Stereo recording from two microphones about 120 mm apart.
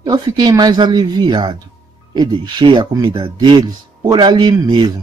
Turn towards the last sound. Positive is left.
turn(degrees=-40)  # may be behind; listen again after turning